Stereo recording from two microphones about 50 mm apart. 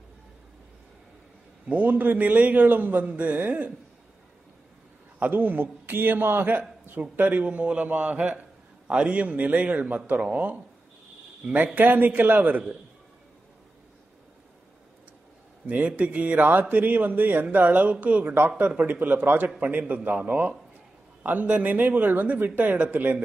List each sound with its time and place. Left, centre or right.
1.7 s a man's voice: right
5.2 s a man's voice: right
7.4 s a man's voice: right
15.6 s a man's voice: right